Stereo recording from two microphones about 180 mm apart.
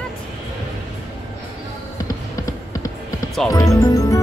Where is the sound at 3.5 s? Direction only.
15° left (ahead or behind).